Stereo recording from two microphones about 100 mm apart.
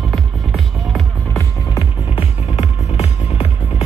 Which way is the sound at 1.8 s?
75° left (ahead or behind).